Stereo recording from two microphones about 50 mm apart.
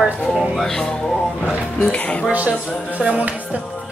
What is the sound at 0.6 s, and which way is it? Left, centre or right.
Speech, centre.